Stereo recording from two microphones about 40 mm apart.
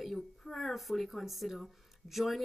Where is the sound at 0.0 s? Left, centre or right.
Centre.